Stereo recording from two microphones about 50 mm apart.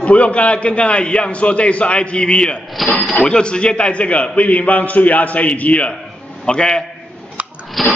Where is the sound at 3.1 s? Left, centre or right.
Left.